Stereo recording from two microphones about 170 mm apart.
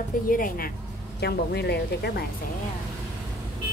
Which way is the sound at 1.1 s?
75° left (ahead or behind).